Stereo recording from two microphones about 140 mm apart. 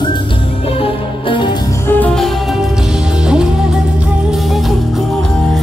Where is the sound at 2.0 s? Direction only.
5° left (ahead or behind).